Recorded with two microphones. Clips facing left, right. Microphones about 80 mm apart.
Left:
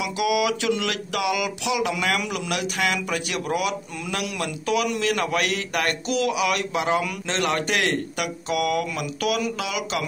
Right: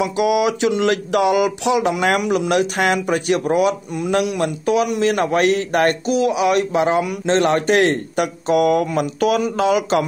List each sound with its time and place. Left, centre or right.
0.0 s speech: right